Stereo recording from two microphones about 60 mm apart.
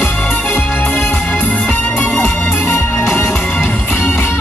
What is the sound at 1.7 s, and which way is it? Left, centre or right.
Music, left.